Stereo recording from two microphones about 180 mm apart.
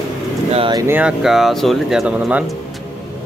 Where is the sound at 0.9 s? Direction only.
5° right (ahead or behind).